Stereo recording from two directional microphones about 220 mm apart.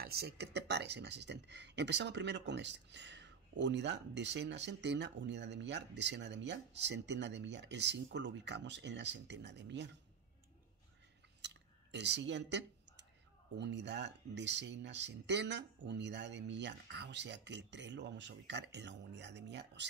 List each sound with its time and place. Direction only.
0.0 s speech: 45° right (ahead or behind)
11.4 s a sound: 50° right (ahead or behind)
13.6 s speech: 50° right (ahead or behind)